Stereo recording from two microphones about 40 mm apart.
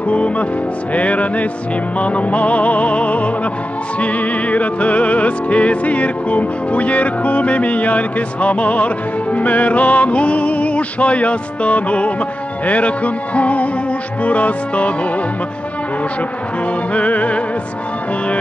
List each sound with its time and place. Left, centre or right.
0.1 s music: left
16.9 s music: left